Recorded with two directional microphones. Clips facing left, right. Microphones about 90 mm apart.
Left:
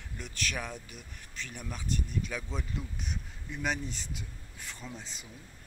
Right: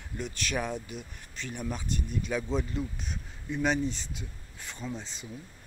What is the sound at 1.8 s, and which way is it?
Speech, 5° right (ahead or behind).